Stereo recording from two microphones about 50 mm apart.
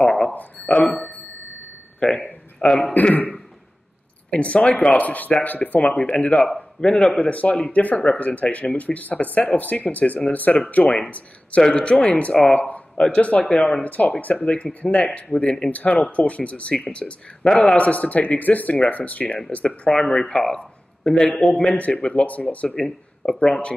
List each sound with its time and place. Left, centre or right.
0.6 s speech: left
2.0 s speech: left
4.3 s speech: left
6.8 s speech: centre
7.2 s speech: left
13.8 s speech: left; by 17.7 s centre
17.7 s speech: left
19.9 s a man's voice: centre
21.5 s speech: left
22.7 s speech: centre